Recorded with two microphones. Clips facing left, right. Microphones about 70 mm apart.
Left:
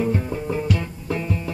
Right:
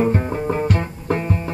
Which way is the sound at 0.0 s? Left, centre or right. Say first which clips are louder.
Right 4 dB; right.